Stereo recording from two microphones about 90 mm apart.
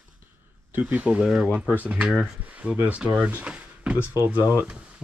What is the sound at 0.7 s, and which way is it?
Speech, 20° right (ahead or behind).